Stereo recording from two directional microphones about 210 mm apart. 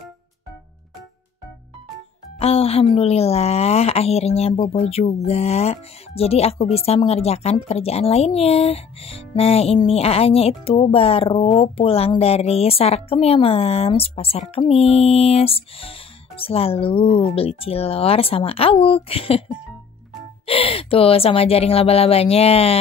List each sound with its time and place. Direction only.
2.3 s speech: 30° left (ahead or behind)
20.4 s speech: 25° left (ahead or behind)